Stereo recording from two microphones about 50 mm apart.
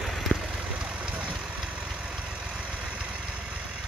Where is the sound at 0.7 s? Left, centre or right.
Centre.